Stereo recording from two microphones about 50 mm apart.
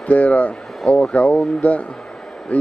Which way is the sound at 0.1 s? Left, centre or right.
Left.